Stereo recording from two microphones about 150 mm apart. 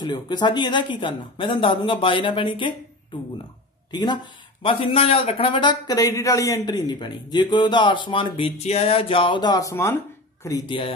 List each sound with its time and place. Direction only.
0.0 s a man's voice: 30° left (ahead or behind)
3.9 s a man's voice: 30° left (ahead or behind)